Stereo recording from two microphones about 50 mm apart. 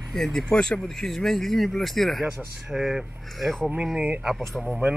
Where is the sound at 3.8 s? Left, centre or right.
Centre.